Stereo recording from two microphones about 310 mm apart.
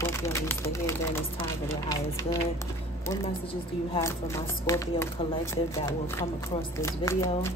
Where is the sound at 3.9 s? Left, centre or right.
Centre.